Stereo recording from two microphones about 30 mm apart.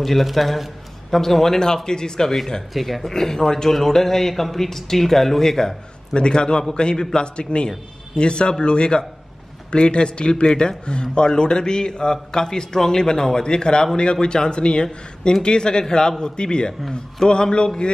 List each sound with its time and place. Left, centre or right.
0.0 s a man's voice: centre; by 2.3 s left
2.7 s a man's voice: centre
3.0 s speech: centre
6.1 s a man's voice: left